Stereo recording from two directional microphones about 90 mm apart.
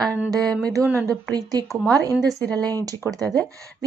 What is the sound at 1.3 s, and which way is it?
A woman's voice, 45° right (ahead or behind).